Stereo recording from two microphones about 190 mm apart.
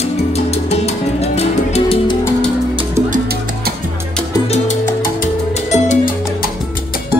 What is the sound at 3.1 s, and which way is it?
Music, 55° right (ahead or behind).